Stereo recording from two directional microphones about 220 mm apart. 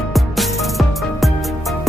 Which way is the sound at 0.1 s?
Centre (ahead or behind).